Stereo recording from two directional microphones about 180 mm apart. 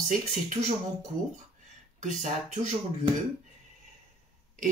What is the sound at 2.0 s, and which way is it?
Speech, 40° right (ahead or behind).